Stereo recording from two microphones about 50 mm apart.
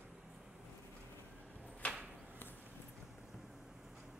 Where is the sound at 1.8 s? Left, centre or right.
Left.